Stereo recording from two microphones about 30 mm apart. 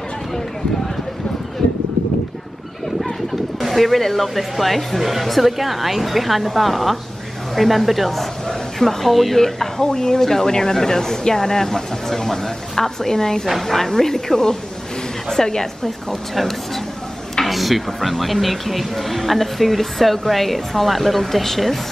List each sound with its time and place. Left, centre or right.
3.6 s speech: centre
9.8 s speech: left
16.3 s speech: centre